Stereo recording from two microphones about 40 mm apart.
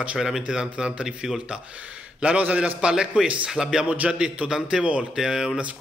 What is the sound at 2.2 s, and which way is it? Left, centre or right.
Speech, right.